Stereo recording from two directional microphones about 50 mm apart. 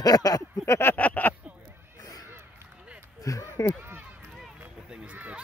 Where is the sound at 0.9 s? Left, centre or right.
Left.